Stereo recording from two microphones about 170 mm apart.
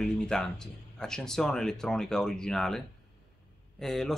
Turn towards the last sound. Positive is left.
turn(degrees=0)  # may be behind; listen again after turning